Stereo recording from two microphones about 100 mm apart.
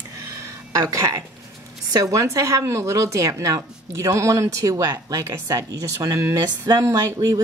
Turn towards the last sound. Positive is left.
turn(degrees=-30)  # may be behind; listen again after turning